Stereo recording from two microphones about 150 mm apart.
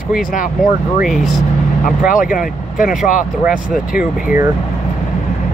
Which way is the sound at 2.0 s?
65° left (ahead or behind).